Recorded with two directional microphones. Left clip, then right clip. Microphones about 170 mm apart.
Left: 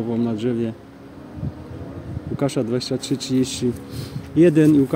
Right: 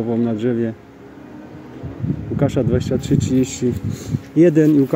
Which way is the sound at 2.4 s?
30° right (ahead or behind).